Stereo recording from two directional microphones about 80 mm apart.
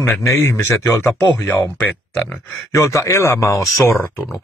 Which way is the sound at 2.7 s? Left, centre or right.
Left.